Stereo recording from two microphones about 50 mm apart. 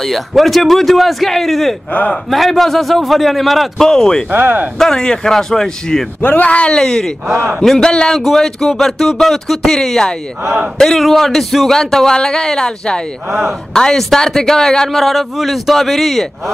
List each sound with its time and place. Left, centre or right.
0.0 s a man's voice: centre
1.9 s a man's voice: left
2.2 s a man's voice: centre
4.3 s speech: right
4.7 s speech: centre
6.2 s speech: left; by 7.9 s centre
7.9 s speech: centre
8.2 s a man's voice: centre